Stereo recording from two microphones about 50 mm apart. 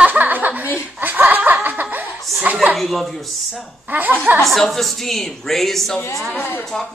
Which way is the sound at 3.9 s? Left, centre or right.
Right.